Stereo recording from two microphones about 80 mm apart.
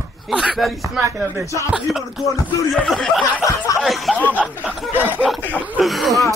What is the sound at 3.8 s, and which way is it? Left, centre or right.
Speech, centre.